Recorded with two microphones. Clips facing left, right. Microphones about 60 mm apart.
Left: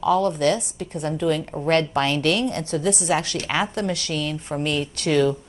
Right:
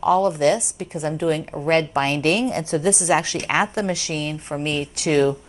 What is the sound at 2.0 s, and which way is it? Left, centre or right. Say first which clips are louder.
Speech: right 1 dB; centre.